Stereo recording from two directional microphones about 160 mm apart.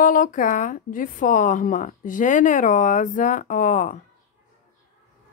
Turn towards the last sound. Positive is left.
turn(degrees=50)  # may be behind; listen again after turning